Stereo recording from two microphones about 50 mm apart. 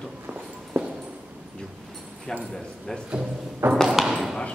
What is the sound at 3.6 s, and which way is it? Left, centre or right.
Ping, right.